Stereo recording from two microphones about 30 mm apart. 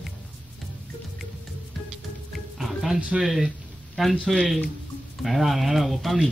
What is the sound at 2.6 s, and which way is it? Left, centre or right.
Music, centre.